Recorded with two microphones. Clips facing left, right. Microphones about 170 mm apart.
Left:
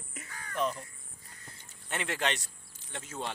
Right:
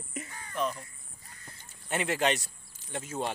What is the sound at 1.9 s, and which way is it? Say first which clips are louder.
Speech: right 5 dB; 10° right (ahead or behind).